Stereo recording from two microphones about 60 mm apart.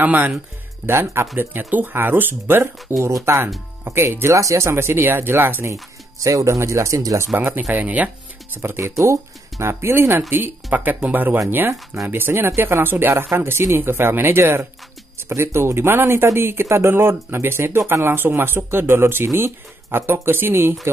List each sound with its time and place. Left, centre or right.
0.0 s speech: right
0.8 s speech: right
3.0 s speech: right
3.8 s speech: right
4.4 s speech: right
5.7 s speech: right
6.6 s speech: right
7.3 s speech: right
8.5 s speech: right
10.3 s speech: right
13.3 s speech: right